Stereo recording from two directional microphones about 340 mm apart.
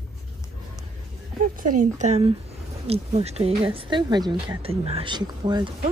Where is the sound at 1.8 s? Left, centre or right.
Centre.